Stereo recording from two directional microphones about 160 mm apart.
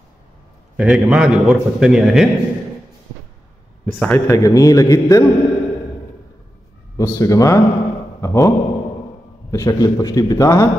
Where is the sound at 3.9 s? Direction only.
10° left (ahead or behind).